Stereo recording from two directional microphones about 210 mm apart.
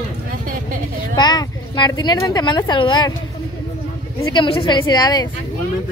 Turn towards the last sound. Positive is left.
turn(degrees=20)  # may be behind; listen again after turning